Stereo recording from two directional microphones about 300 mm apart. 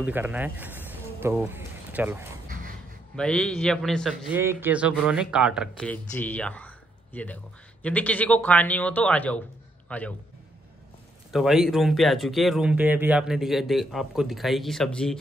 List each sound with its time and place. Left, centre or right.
0.0 s speech: centre
2.4 s a sound: right
3.2 s a man's voice: centre
11.3 s a man's voice: centre